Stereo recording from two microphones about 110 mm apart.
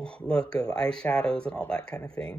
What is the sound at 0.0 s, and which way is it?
Speech, 10° left (ahead or behind).